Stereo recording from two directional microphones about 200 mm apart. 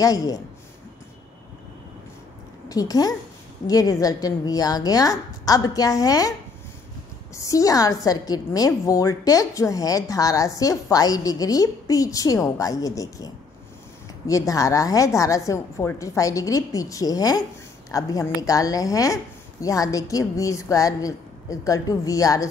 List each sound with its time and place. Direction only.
0.0 s a woman's voice: 15° left (ahead or behind)
2.7 s a woman's voice: 20° left (ahead or behind)
7.3 s a woman's voice: 15° left (ahead or behind)